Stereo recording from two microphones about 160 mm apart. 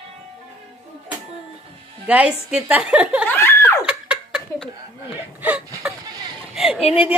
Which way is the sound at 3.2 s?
15° left (ahead or behind).